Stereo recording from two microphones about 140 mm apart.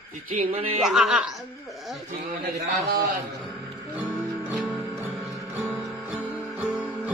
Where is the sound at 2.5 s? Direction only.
90° right.